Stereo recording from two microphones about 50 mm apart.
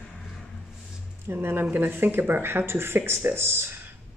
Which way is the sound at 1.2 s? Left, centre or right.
Right.